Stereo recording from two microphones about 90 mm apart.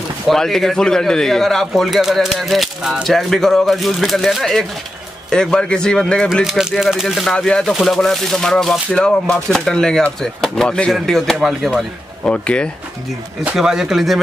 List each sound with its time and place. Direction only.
0.3 s a man's voice: 5° left (ahead or behind)
12.3 s speech: 10° left (ahead or behind)
13.4 s a man's voice: 10° right (ahead or behind)